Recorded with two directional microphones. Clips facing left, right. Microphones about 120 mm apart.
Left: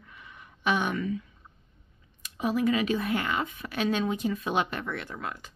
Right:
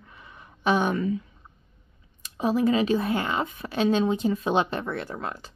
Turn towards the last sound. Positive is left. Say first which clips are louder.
# right 3 dB
turn(degrees=-30)  # may be behind; listen again after turning